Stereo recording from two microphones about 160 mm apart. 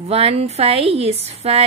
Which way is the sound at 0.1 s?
40° right (ahead or behind).